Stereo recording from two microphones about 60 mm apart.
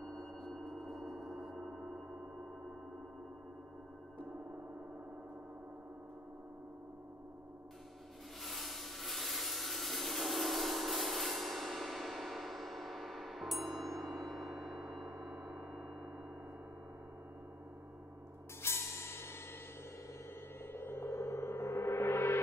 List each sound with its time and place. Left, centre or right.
0.0 s gong: centre
1.6 s gong: right
8.4 s a sound: centre
18.6 s music: left
20.6 s gong: left